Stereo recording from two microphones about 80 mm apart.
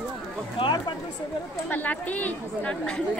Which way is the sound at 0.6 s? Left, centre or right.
Left.